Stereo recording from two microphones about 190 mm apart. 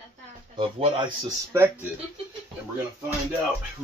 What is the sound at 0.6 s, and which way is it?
Speech, 25° right (ahead or behind).